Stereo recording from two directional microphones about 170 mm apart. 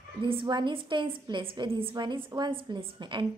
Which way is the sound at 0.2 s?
30° right (ahead or behind).